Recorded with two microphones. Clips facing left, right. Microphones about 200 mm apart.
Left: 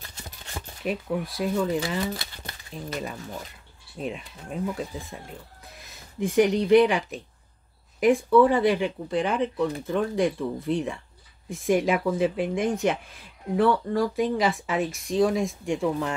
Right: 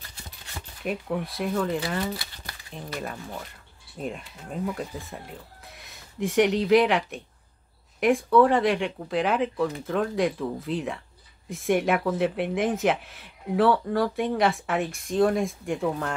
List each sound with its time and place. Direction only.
0.8 s speech: centre (ahead or behind)
2.1 s crumpling: 25° left (ahead or behind)
4.0 s speech: centre (ahead or behind)
5.7 s speech: centre (ahead or behind)